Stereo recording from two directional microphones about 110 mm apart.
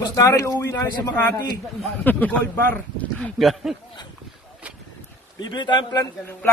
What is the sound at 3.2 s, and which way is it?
Speech, centre (ahead or behind).